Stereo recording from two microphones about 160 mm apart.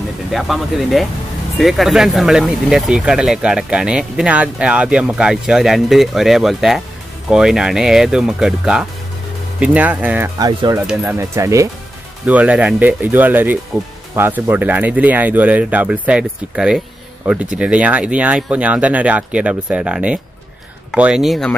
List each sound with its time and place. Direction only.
0.3 s speech: centre (ahead or behind)
10.4 s speech: 25° right (ahead or behind)
10.9 s speech: 5° right (ahead or behind)
11.1 s speech: 20° right (ahead or behind)
12.3 s speech: 10° right (ahead or behind)